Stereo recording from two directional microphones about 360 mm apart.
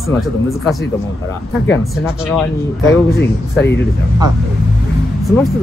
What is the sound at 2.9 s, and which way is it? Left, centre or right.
Speech, left.